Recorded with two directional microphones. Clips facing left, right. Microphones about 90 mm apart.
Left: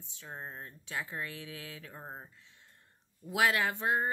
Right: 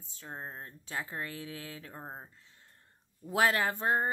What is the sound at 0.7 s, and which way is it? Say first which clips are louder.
Speech: left 1 dB; 35° right (ahead or behind).